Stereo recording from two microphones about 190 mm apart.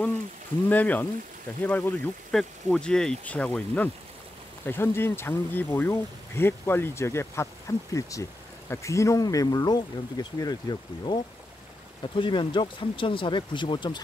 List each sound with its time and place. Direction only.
0.7 s speech: 10° left (ahead or behind); by 14.0 s 25° left (ahead or behind)